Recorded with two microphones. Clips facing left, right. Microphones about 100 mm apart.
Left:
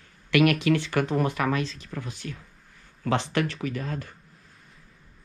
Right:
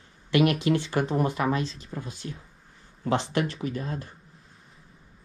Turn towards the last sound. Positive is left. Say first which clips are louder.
# even
turn(degrees=-30)  # may be behind; listen again after turning